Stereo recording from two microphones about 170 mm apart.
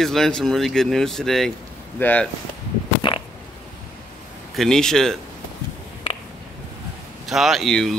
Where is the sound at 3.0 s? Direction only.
30° left (ahead or behind).